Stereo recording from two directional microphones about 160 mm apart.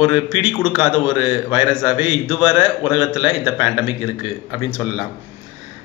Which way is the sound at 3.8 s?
35° left (ahead or behind).